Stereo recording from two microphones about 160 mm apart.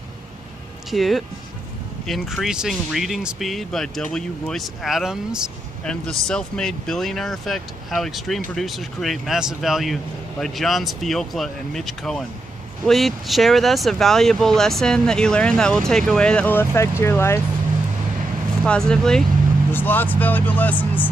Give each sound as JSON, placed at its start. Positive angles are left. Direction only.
{"t": 0.8, "sound": "speech", "side_deg": 0}
{"t": 18.6, "sound": "speech", "side_deg": 5}